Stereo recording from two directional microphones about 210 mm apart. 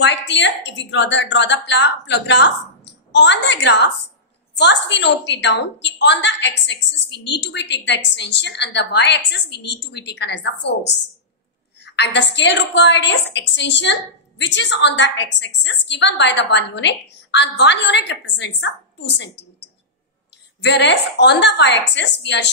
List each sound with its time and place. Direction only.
0.0 s a woman's voice: 60° left (ahead or behind)
20.6 s a woman's voice: 55° left (ahead or behind)